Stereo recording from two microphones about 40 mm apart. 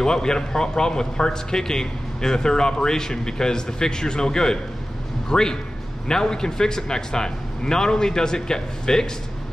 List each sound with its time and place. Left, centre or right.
0.0 s a man's voice: centre